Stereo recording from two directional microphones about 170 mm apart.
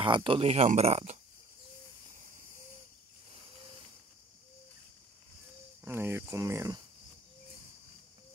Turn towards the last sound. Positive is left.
turn(degrees=-15)  # may be behind; listen again after turning